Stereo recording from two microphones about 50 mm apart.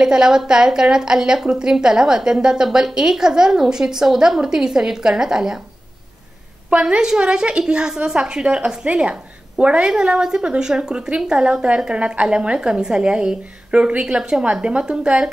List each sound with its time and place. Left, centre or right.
0.0 s a woman's voice: centre
6.7 s a woman's voice: right